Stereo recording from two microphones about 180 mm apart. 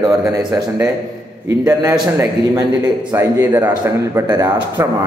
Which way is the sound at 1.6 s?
15° right (ahead or behind).